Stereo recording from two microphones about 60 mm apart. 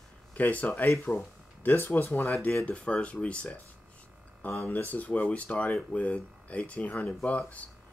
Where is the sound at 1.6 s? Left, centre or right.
Left.